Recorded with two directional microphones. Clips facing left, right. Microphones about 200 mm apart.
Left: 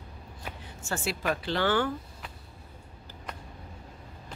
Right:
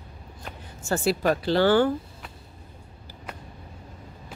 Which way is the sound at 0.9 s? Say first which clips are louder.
Right 8 dB; 40° right (ahead or behind).